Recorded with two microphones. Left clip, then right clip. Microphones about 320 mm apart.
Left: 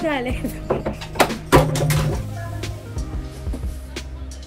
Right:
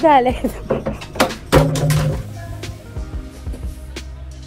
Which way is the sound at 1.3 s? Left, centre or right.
Centre.